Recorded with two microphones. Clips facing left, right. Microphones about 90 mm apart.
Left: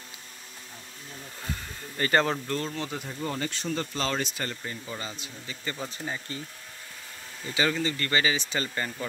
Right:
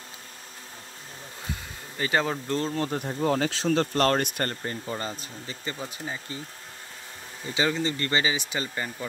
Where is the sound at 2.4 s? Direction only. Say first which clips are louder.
Right 4 dB; 30° right (ahead or behind).